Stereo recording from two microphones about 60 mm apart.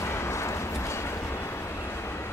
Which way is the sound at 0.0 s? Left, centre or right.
Left.